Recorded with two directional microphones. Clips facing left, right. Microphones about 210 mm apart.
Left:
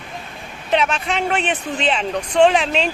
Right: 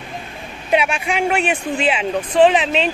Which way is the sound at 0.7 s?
10° right (ahead or behind).